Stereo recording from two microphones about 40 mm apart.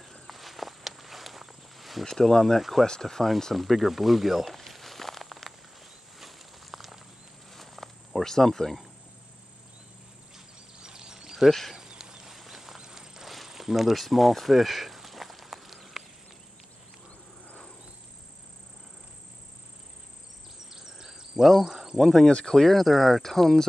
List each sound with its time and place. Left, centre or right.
0.0 s walk: centre
2.0 s speech: centre
3.5 s speech: centre
4.5 s walk: centre
6.1 s a sound: centre
10.3 s a sound: centre
20.7 s a sound: centre
21.9 s speech: centre
22.3 s speech: centre